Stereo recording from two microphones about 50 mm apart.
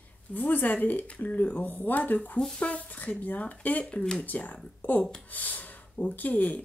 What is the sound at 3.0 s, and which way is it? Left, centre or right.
Speech, left.